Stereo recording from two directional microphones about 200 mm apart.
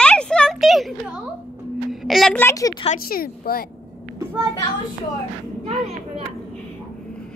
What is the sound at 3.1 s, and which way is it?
Speech, 50° left (ahead or behind).